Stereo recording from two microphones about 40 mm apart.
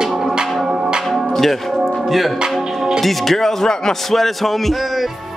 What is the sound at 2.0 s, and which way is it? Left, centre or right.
Music, centre.